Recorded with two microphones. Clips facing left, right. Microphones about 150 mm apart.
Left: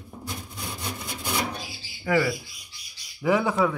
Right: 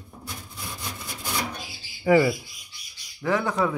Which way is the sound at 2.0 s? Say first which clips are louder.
Right 5 dB; 25° right (ahead or behind).